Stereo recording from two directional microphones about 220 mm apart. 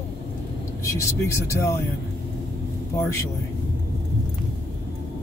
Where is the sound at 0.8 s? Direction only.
15° left (ahead or behind).